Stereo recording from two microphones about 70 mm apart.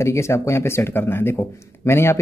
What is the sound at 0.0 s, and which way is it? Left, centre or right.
A man's voice, left.